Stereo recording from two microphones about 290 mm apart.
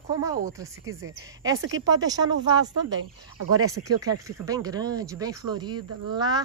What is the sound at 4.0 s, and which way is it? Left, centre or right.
A woman's voice, centre.